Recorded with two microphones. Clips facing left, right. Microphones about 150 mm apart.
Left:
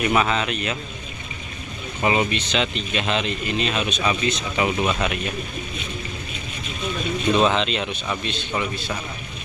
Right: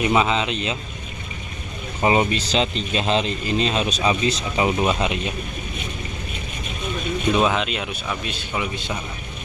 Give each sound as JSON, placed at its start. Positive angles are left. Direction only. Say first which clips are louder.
{"t": 0.0, "sound": "speech", "louder": "right 1 dB", "side_deg": -20}
{"t": 2.0, "sound": "speech", "louder": "right 2 dB", "side_deg": -30}
{"t": 7.3, "sound": "speech", "louder": "left 2 dB", "side_deg": -10}